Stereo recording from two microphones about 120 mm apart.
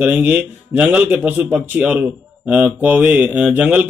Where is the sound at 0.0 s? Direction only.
15° right (ahead or behind).